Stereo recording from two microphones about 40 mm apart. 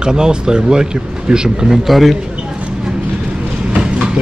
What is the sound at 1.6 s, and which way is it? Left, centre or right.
Speech, centre.